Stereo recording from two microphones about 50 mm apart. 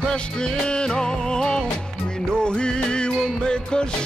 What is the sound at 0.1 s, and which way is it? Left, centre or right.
Music, centre.